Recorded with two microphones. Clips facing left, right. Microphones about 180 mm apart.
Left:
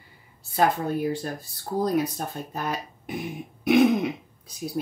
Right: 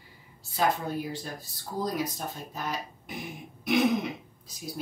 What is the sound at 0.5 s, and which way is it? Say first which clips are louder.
Speech: left 5 dB; 60° left (ahead or behind).